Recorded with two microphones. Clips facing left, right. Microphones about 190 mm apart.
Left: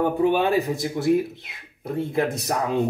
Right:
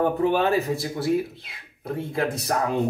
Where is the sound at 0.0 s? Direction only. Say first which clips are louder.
Left 1 dB; 15° left (ahead or behind).